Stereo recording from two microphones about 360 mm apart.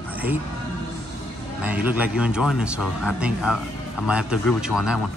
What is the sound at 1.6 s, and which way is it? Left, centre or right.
Speech, centre.